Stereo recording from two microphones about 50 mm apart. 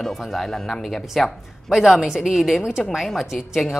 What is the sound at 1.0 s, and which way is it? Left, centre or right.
A woman's voice, centre.